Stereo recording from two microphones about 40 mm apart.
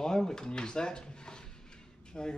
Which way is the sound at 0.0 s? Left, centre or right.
Centre.